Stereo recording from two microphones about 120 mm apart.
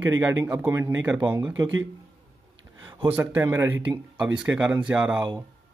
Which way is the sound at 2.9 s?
45° right (ahead or behind).